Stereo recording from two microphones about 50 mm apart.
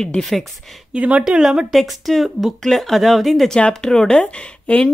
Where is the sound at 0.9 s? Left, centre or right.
Right.